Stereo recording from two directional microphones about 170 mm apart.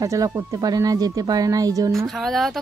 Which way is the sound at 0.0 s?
20° right (ahead or behind).